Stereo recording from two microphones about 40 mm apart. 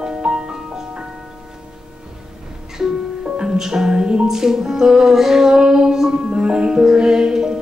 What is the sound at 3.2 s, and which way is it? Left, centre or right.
Music, right.